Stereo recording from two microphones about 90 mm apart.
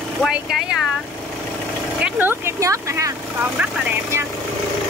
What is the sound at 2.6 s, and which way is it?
Speech, 35° right (ahead or behind).